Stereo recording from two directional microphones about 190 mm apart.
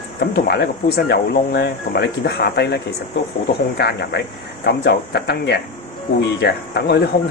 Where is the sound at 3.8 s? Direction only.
60° left (ahead or behind).